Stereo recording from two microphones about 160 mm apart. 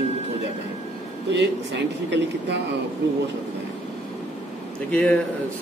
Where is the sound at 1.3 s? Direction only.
90° right.